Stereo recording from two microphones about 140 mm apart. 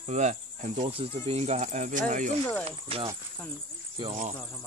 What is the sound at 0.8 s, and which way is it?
Speech, 45° right (ahead or behind).